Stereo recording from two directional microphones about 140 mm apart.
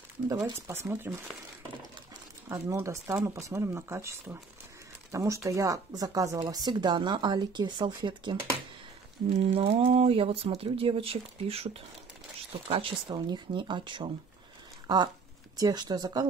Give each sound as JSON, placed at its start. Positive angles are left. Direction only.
{"t": 0.6, "sound": "speech", "side_deg": -20}
{"t": 2.5, "sound": "speech", "side_deg": -20}
{"t": 9.3, "sound": "speech", "side_deg": -45}